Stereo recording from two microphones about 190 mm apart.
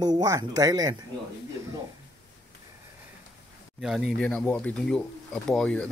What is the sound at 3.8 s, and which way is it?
Speech, centre (ahead or behind).